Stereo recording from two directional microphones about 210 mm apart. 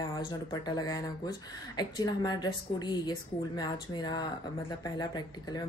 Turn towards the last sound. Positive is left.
turn(degrees=20)  # may be behind; listen again after turning